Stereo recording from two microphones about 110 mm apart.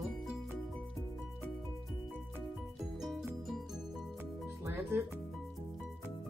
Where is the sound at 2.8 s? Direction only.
Centre (ahead or behind).